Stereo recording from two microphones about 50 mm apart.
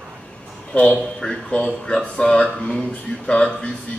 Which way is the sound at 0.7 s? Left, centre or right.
Left.